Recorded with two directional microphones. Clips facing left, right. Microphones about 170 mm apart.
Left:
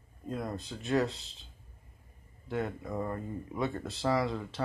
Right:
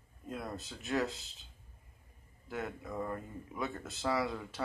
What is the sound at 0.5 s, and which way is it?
Speech, centre (ahead or behind).